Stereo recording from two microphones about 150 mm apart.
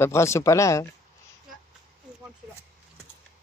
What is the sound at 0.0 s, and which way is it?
Speech, 20° left (ahead or behind).